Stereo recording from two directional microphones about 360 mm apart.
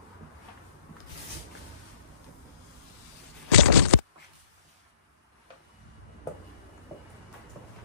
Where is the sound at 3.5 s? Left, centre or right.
Right.